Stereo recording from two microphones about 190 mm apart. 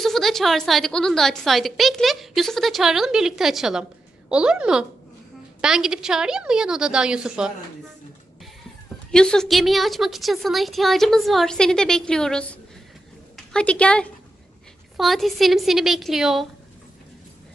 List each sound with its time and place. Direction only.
0.0 s a woman's voice: centre (ahead or behind)
9.1 s a woman's voice: 5° left (ahead or behind)